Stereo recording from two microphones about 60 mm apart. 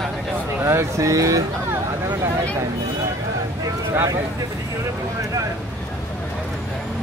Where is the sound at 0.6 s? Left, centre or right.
Right.